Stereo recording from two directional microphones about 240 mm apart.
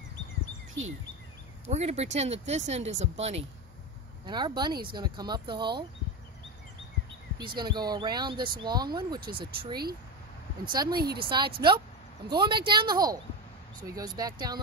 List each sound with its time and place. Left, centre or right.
1.7 s speech: right
7.3 s speech: centre